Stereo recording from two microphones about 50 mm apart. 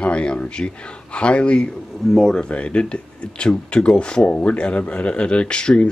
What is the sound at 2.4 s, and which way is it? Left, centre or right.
Speech, left.